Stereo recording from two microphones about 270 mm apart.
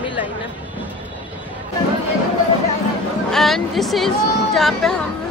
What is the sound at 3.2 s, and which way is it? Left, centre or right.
Speech, centre.